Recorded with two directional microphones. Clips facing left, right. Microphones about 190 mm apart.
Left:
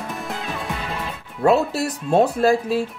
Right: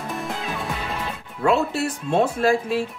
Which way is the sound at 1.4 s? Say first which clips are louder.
Left 3 dB; 40° left (ahead or behind).